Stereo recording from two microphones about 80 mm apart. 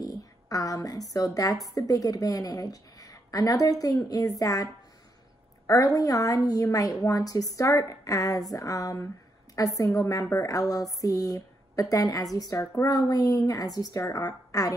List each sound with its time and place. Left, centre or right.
0.0 s a sound: left
1.1 s a woman's voice: left
5.7 s a woman's voice: left